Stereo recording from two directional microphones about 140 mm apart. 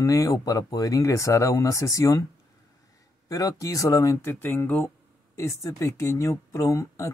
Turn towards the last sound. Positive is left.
turn(degrees=20)  # may be behind; listen again after turning